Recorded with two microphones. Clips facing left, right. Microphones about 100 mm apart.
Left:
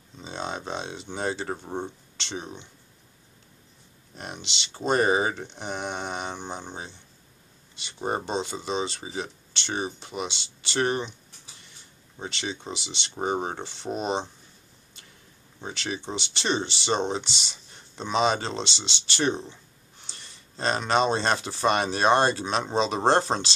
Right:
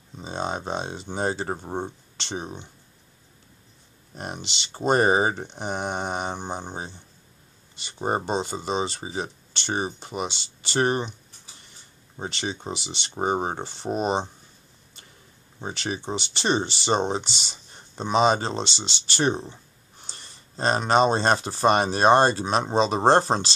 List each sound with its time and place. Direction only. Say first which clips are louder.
0.2 s a sound: right 4 dB; 45° right (ahead or behind)
0.7 s speech: right 3 dB; 40° right (ahead or behind)
4.2 s speech: right 3 dB; 45° right (ahead or behind)
8.3 s speech: right 3 dB; 40° right (ahead or behind)
12.2 s speech: right 3 dB; 40° right (ahead or behind)
15.6 s speech: right 2 dB; 40° right (ahead or behind)